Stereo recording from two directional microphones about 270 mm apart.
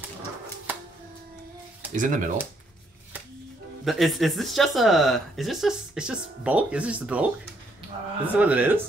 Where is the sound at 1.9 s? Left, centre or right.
Right.